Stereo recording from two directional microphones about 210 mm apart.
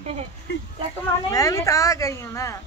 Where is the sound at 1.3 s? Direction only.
15° left (ahead or behind).